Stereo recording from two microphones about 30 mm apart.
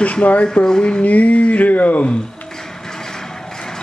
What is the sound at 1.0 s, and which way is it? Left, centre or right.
Speech, left.